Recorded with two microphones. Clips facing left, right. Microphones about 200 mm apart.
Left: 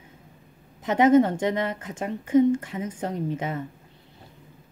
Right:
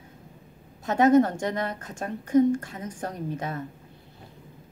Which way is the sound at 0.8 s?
20° left (ahead or behind).